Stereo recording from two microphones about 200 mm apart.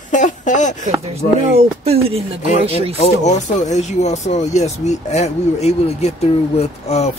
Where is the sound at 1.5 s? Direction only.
30° right (ahead or behind).